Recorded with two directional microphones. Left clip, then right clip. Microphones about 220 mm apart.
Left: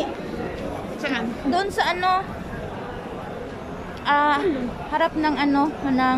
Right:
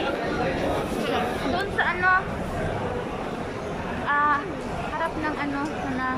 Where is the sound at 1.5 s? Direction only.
25° left (ahead or behind).